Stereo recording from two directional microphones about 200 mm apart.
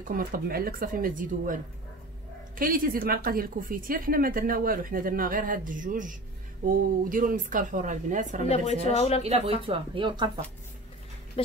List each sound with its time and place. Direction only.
0.1 s a woman's voice: 50° right (ahead or behind)
8.5 s speech: 30° left (ahead or behind)
9.2 s speech: 30° right (ahead or behind)
11.4 s speech: 30° left (ahead or behind)